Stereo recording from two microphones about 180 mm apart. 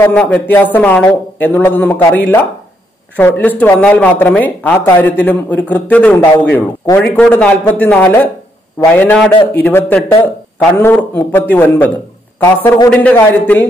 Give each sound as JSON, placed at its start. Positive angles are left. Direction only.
{"t": 0.0, "sound": "speech", "side_deg": 5}
{"t": 7.0, "sound": "speech", "side_deg": 5}